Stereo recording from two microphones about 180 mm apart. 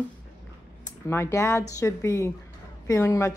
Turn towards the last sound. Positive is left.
turn(degrees=15)  # may be behind; listen again after turning